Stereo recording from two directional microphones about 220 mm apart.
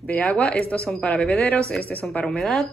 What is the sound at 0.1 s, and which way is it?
A woman's voice, 5° left (ahead or behind).